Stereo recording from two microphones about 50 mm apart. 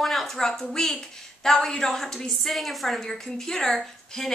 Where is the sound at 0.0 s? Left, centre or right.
Centre.